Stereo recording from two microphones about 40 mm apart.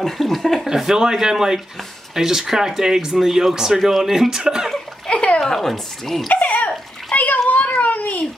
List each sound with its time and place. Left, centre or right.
0.0 s speech: centre
0.7 s speech: centre
5.0 s a sound: left
5.4 s speech: centre
6.2 s a sound: left
7.2 s children playing: left